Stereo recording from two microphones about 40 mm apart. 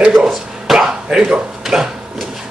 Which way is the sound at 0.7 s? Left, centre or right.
Centre.